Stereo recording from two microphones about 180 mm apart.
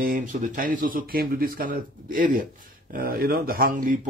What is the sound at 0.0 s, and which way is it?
Speech, 50° right (ahead or behind).